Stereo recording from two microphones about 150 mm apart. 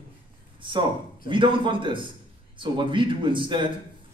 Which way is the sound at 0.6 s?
35° right (ahead or behind).